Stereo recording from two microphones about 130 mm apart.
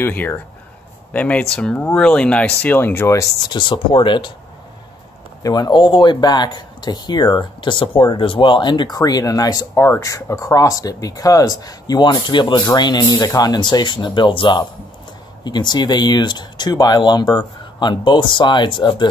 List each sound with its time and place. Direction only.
0.0 s speech: 15° left (ahead or behind)
3.5 s speech: 40° left (ahead or behind)
5.4 s speech: 30° left (ahead or behind)